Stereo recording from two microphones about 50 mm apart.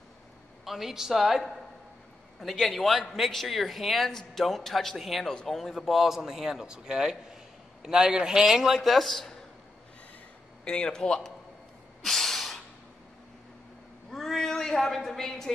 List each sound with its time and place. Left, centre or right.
0.7 s a man's voice: centre
5.3 s speech: centre
5.8 s a man's voice: centre
8.9 s speech: centre
10.6 s speech: centre
12.0 s snort: centre
14.1 s a sound: centre